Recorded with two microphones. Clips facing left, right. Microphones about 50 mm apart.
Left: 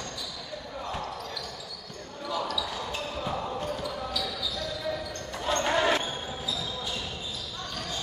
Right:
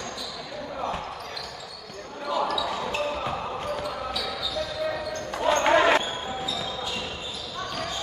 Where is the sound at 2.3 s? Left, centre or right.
Right.